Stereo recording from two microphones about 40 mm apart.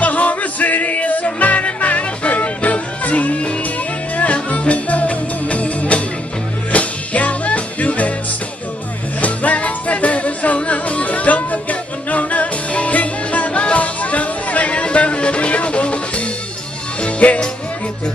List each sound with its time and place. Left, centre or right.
0.0 s music: left
9.2 s music: left